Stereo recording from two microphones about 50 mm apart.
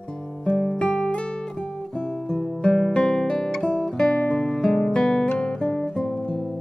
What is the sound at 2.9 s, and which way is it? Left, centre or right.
Guitar, centre.